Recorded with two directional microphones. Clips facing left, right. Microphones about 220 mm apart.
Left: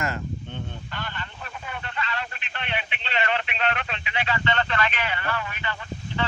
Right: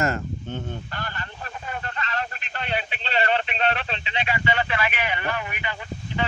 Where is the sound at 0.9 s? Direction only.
40° right (ahead or behind).